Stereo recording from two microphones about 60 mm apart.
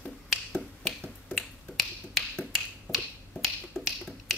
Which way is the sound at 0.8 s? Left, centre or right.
Centre.